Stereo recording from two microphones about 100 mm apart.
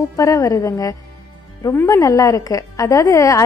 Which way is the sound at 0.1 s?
35° left (ahead or behind).